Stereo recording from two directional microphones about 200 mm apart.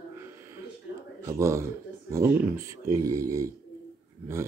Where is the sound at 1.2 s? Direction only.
15° right (ahead or behind).